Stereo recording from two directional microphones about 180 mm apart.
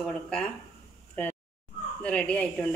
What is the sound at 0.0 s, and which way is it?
Speech, 5° left (ahead or behind).